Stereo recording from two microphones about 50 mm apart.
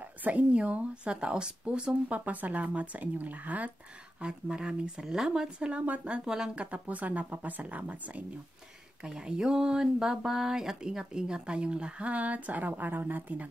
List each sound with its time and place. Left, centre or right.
0.0 s speech: right
4.2 s speech: centre
9.0 s speech: centre; by 13.5 s right